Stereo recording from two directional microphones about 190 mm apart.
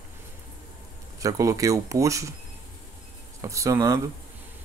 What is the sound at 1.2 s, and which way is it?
Speech, 15° right (ahead or behind).